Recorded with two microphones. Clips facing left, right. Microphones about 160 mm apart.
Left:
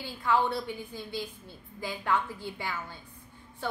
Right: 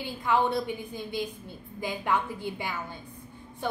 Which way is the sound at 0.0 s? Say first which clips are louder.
Right 2 dB; 15° right (ahead or behind).